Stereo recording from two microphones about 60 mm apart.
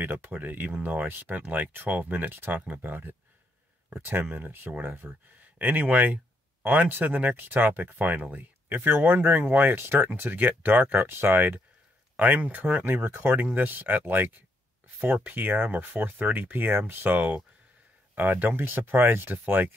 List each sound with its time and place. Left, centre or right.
0.0 s speech: right
12.8 s speech: right